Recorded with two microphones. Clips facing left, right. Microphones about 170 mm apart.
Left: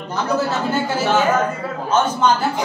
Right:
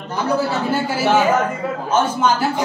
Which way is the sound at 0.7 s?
10° right (ahead or behind).